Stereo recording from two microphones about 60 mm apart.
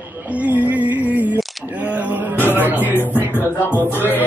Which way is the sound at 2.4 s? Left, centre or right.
Left.